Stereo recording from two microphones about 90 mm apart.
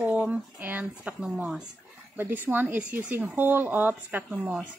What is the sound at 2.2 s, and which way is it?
Speech, 20° right (ahead or behind).